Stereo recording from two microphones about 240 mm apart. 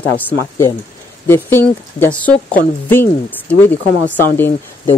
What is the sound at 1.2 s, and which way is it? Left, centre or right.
Speech, centre.